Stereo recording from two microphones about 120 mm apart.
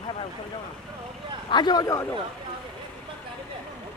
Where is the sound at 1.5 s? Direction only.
40° left (ahead or behind).